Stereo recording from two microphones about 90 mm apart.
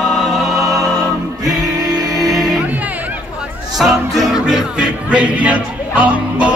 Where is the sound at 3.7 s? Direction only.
5° right (ahead or behind).